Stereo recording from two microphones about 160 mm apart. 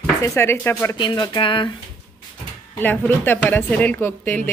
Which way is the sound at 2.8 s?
10° left (ahead or behind).